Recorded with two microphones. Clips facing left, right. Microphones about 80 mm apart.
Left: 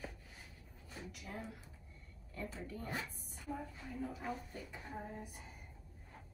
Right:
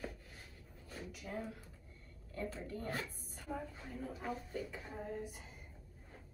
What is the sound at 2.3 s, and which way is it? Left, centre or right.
Speech, right.